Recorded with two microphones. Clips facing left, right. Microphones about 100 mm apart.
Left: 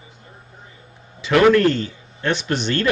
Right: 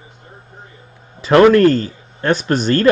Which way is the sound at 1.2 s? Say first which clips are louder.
Right 5 dB; 40° right (ahead or behind).